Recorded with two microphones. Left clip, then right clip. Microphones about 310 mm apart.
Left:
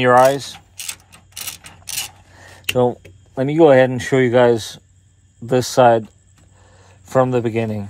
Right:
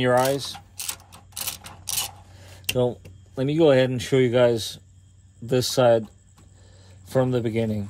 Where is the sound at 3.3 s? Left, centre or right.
Centre.